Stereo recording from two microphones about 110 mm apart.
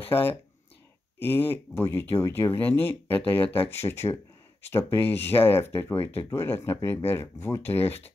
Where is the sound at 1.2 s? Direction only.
20° left (ahead or behind).